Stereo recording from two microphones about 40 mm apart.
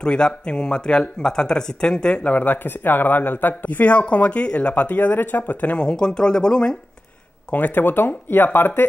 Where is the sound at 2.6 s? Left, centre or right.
Left.